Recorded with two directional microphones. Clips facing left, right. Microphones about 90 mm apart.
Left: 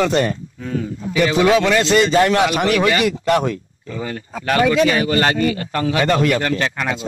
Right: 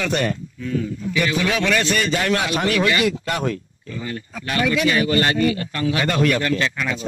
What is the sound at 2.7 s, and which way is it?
Speech, 40° left (ahead or behind).